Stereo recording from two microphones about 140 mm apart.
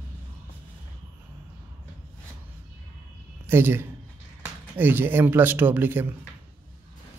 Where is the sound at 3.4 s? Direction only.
15° right (ahead or behind).